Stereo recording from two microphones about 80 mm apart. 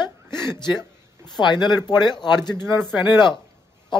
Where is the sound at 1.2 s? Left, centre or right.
Left.